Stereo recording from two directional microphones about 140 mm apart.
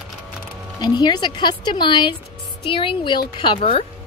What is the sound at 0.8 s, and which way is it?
Speech, 30° left (ahead or behind).